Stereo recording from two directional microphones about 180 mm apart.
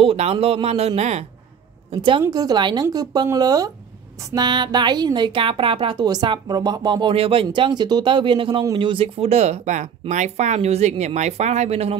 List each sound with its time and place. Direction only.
0.0 s a man's voice: 35° right (ahead or behind)